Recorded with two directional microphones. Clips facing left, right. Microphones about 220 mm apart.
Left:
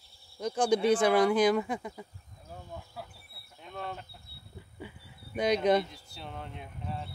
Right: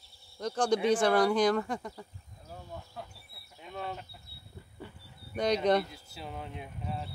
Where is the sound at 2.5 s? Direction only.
Centre (ahead or behind).